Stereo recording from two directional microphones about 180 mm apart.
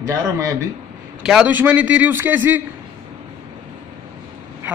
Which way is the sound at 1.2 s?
5° right (ahead or behind).